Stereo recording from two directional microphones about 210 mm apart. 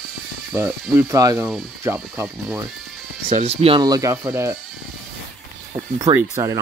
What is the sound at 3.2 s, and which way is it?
Speech, 30° right (ahead or behind).